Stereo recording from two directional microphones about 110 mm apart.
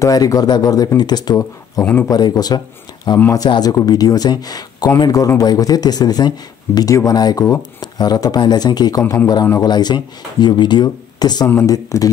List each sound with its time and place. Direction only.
0.0 s speech: 35° left (ahead or behind)
11.4 s speech: 25° left (ahead or behind)